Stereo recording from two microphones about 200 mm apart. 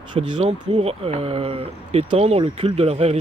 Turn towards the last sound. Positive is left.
turn(degrees=-30)  # may be behind; listen again after turning